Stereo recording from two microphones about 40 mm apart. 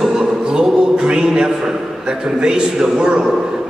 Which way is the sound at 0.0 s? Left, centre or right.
Centre.